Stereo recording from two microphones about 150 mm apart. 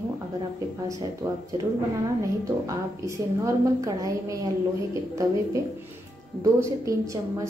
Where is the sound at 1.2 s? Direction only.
20° right (ahead or behind).